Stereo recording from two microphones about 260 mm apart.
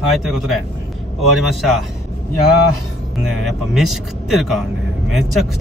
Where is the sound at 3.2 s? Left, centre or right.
Centre.